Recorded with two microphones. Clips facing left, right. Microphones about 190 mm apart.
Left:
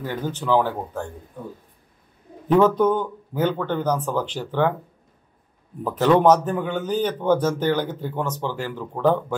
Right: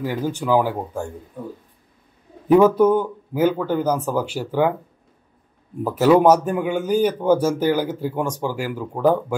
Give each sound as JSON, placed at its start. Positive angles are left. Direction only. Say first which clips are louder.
{"t": 0.0, "sound": "speech", "louder": "right 4 dB", "side_deg": -10}
{"t": 2.4, "sound": "speech", "louder": "right 3 dB", "side_deg": -10}
{"t": 5.9, "sound": "speech", "louder": "right 2 dB", "side_deg": -10}